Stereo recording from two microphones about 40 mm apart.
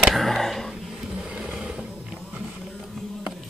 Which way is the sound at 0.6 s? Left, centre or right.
Centre.